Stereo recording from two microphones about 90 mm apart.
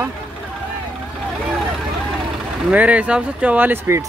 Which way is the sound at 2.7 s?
15° right (ahead or behind).